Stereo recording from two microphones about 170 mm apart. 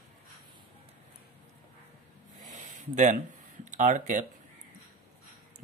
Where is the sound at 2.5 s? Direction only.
45° right (ahead or behind).